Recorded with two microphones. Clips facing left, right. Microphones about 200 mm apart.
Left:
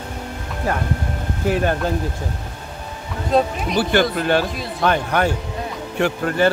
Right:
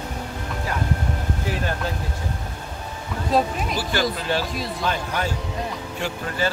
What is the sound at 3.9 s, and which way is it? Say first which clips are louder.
Speech: left 6 dB; 60° left (ahead or behind).